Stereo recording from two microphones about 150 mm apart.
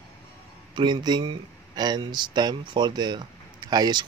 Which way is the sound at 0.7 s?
30° right (ahead or behind).